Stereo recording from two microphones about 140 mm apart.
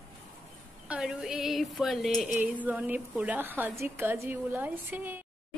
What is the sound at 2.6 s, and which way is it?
A woman's voice, 10° right (ahead or behind).